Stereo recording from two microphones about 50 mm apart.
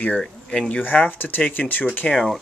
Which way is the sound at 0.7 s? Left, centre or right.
Left.